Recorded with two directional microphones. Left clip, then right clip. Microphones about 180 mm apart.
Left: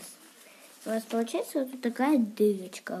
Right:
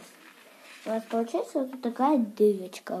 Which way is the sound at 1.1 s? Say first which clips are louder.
Right 3 dB; 50° left (ahead or behind).